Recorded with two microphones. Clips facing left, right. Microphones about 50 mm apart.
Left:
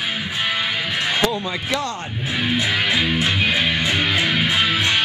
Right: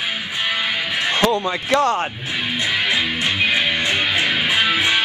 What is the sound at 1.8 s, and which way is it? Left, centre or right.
Speech, right.